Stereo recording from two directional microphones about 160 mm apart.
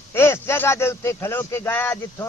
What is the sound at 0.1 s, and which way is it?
Speech, 15° left (ahead or behind).